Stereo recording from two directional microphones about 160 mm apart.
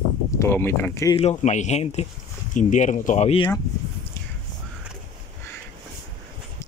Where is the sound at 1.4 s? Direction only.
45° left (ahead or behind).